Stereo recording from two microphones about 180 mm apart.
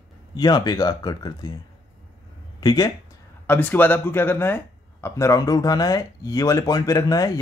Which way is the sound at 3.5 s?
10° left (ahead or behind).